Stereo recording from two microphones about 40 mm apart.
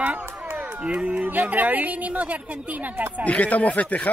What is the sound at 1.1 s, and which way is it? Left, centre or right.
Speech, right.